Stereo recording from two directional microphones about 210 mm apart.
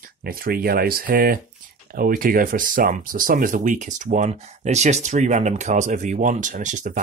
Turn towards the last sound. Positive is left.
turn(degrees=-35)  # may be behind; listen again after turning